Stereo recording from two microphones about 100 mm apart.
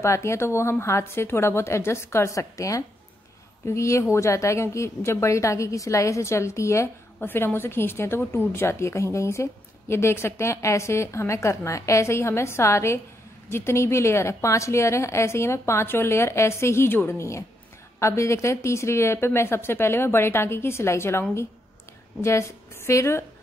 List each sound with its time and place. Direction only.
0.0 s a woman's voice: 30° left (ahead or behind)